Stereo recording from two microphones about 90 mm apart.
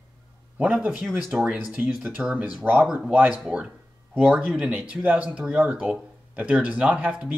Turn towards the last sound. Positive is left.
turn(degrees=-10)  # may be behind; listen again after turning